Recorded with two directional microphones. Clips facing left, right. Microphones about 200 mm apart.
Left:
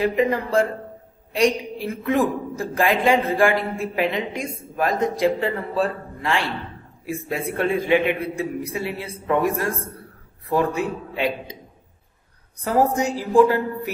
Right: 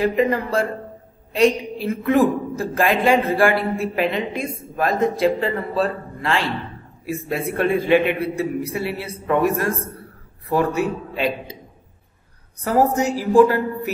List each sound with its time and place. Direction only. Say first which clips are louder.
0.0 s a woman's voice: right 1 dB; 15° left (ahead or behind)
13.2 s a woman's voice: right 2 dB; 15° left (ahead or behind)